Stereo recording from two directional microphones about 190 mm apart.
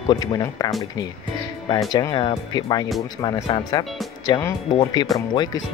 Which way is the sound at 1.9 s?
20° left (ahead or behind).